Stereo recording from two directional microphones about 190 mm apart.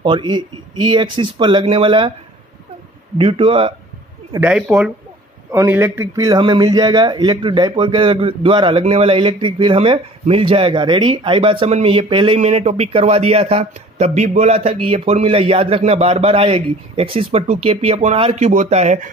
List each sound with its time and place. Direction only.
0.0 s speech: 25° right (ahead or behind)
3.2 s speech: 30° right (ahead or behind)
4.3 s a man's voice: 10° right (ahead or behind); by 19.0 s 35° right (ahead or behind)